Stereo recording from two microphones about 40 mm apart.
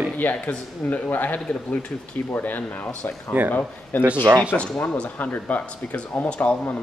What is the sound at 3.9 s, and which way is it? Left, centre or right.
Speech, left.